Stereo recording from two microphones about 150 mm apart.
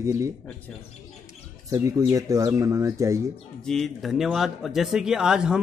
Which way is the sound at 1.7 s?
20° right (ahead or behind).